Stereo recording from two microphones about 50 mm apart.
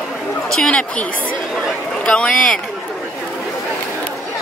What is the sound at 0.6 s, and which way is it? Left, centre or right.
Speech, left.